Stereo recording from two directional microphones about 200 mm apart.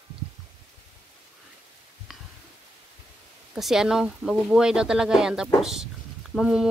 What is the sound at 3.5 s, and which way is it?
Speech, centre (ahead or behind).